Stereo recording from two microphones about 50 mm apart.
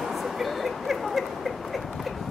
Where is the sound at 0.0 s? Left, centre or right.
Centre.